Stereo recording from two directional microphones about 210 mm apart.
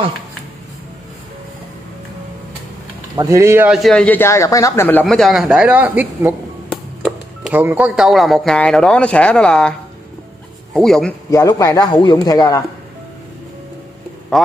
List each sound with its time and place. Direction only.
3.2 s a man's voice: 15° right (ahead or behind)
6.7 s music: centre (ahead or behind)
7.6 s a man's voice: 5° right (ahead or behind)
11.2 s speech: 15° left (ahead or behind)